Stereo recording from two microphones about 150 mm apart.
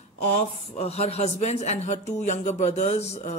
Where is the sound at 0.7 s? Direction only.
45° left (ahead or behind).